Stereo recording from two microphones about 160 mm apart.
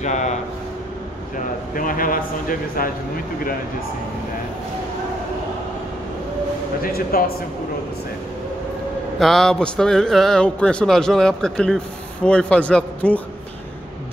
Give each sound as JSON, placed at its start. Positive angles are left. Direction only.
{"t": 0.0, "sound": "speech", "side_deg": 45}
{"t": 1.8, "sound": "a man's voice", "side_deg": 60}
{"t": 6.8, "sound": "speech", "side_deg": 70}
{"t": 9.2, "sound": "a man's voice", "side_deg": 0}